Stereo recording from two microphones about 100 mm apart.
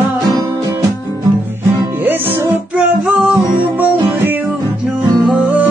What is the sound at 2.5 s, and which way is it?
Music, 15° right (ahead or behind).